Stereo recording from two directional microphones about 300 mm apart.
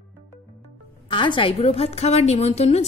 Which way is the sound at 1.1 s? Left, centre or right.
Centre.